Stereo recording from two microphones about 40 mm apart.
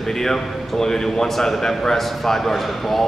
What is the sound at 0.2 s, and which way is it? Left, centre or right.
A man's voice, centre.